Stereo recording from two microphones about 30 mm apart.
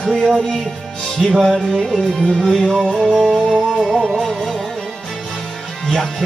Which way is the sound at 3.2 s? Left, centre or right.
Centre.